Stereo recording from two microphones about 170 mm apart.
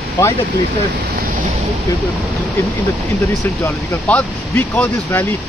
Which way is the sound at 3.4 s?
15° left (ahead or behind).